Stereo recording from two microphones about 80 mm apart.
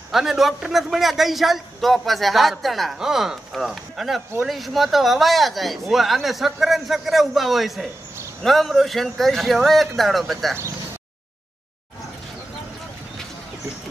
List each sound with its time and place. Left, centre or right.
0.1 s a man's voice: centre